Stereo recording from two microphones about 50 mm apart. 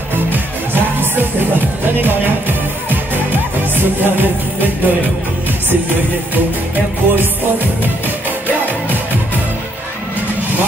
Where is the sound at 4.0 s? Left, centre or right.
Right.